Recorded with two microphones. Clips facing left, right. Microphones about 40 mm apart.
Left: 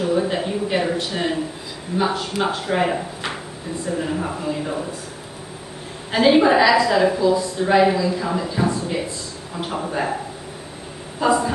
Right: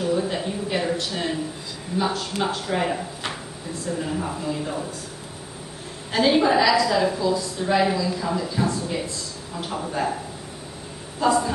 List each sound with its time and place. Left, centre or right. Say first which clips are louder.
0.0 s a sound: left 3 dB; centre
2.0 s a woman's voice: left 3 dB; centre
6.1 s a woman's voice: left 4 dB; centre
11.1 s speech: left 2 dB; centre